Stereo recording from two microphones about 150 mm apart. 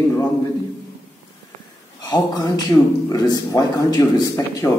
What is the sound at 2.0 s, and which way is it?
Speech, 25° left (ahead or behind).